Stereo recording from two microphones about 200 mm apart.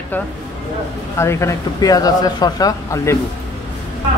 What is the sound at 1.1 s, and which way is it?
Speech, 15° left (ahead or behind).